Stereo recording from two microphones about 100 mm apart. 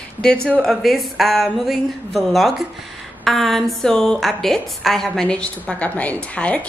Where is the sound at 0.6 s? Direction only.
Centre (ahead or behind).